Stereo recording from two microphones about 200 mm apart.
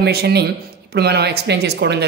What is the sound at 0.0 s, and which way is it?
A woman's voice, 55° right (ahead or behind).